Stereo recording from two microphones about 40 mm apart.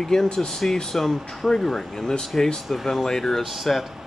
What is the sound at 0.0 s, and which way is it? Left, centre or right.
Speech, centre.